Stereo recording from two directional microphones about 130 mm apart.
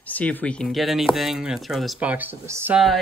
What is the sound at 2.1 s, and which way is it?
Speech, 15° right (ahead or behind).